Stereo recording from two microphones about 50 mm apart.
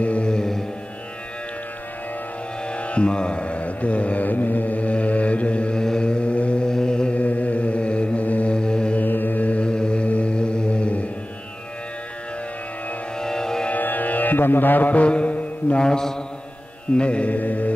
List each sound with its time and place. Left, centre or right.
0.0 s music: left
0.3 s music: centre
2.7 s mantra: left
7.2 s mantra: left
8.5 s mantra: centre
8.9 s mantra: left
13.2 s music: centre
13.7 s music: left
15.9 s mantra: centre
16.9 s mantra: left